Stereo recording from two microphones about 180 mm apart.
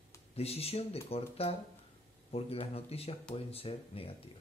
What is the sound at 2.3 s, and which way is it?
Speech, 35° left (ahead or behind).